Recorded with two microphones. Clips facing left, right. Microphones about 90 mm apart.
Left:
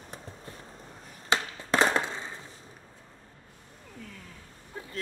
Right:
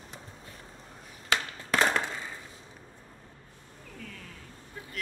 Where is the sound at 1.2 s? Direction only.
25° left (ahead or behind).